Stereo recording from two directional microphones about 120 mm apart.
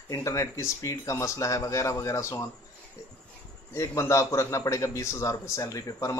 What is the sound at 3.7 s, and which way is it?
A man's voice, 25° left (ahead or behind).